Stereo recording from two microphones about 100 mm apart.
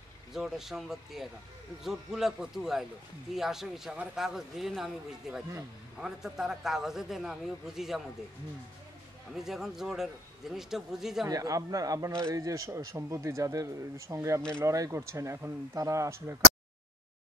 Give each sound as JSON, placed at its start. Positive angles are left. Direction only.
{"t": 0.3, "sound": "a man's voice", "side_deg": -5}
{"t": 9.3, "sound": "a man's voice", "side_deg": -5}
{"t": 11.2, "sound": "a man's voice", "side_deg": -35}